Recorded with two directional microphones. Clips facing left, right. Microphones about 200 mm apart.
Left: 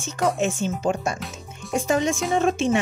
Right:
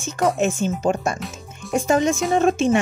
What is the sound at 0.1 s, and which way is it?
Speech, 45° right (ahead or behind).